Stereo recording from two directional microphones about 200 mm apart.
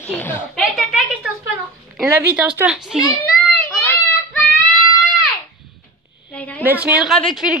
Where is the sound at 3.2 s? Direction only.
5° left (ahead or behind).